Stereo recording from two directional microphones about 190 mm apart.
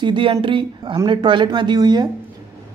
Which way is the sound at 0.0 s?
25° right (ahead or behind).